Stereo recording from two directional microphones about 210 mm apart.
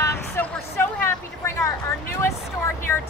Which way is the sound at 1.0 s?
10° left (ahead or behind).